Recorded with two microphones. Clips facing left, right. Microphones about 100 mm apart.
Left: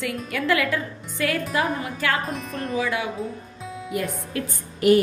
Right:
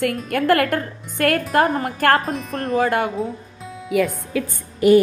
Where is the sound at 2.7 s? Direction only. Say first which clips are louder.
Right 7 dB; 50° right (ahead or behind).